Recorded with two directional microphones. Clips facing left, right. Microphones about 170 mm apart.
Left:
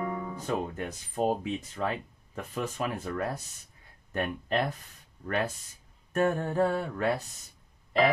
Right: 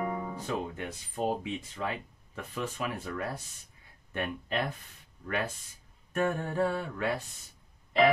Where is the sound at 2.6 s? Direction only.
40° left (ahead or behind).